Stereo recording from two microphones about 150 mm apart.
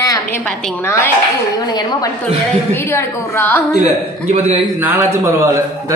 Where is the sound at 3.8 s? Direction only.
50° right (ahead or behind).